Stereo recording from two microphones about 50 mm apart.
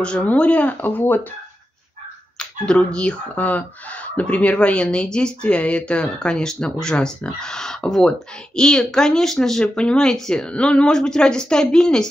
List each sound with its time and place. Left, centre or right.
0.0 s speech: left
2.3 s speech: centre
3.3 s speech: left; by 12.1 s centre